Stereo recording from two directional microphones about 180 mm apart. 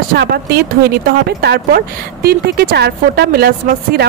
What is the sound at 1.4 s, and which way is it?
Speech, 60° right (ahead or behind).